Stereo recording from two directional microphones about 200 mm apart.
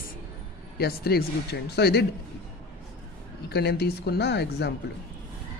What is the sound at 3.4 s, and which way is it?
Speech, 55° left (ahead or behind).